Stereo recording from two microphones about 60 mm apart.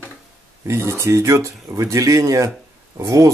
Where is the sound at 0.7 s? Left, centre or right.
Right.